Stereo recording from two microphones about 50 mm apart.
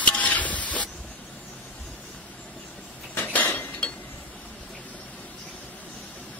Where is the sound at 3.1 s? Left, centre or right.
Left.